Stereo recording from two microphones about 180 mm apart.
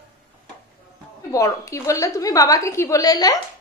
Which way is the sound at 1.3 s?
15° left (ahead or behind).